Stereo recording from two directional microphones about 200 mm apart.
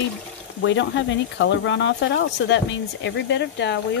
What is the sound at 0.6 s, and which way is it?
Speech, 65° left (ahead or behind).